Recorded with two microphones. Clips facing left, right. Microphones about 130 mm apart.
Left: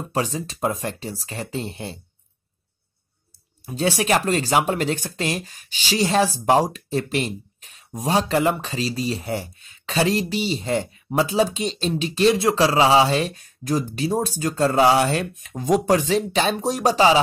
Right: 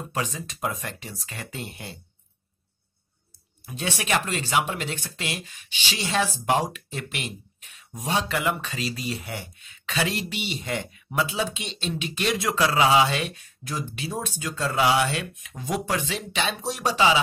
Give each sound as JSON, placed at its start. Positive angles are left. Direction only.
{"t": 0.1, "sound": "speech", "side_deg": 35}
{"t": 3.6, "sound": "speech", "side_deg": 35}